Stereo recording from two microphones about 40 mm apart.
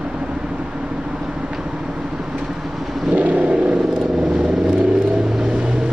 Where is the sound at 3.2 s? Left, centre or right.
Right.